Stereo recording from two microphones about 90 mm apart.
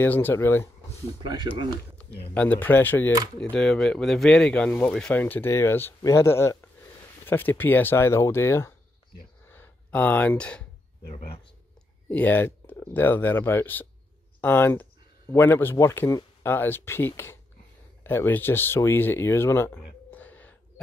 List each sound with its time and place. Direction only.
0.0 s speech: 25° left (ahead or behind)
1.2 s speech: 55° right (ahead or behind)
2.3 s speech: 15° left (ahead or behind)
3.3 s speech: 5° left (ahead or behind); by 8.7 s 30° left (ahead or behind)
9.5 s a sound: 20° left (ahead or behind)
12.1 s speech: 20° left (ahead or behind)